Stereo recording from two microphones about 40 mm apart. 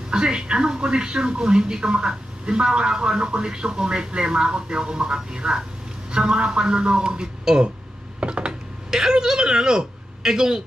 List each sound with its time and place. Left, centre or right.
0.1 s speech: right